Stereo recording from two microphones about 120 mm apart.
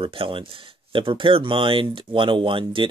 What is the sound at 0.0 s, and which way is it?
Speech, 45° right (ahead or behind).